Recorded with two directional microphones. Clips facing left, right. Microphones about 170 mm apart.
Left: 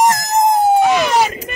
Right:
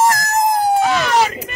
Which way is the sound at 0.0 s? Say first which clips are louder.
Left 2 dB; 20° left (ahead or behind).